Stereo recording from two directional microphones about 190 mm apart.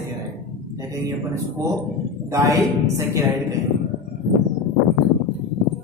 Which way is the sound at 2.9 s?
15° right (ahead or behind).